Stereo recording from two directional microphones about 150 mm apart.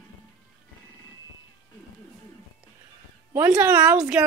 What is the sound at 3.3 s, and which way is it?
Speech, 15° right (ahead or behind).